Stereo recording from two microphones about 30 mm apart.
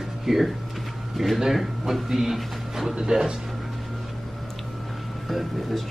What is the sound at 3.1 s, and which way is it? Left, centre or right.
Speech, right.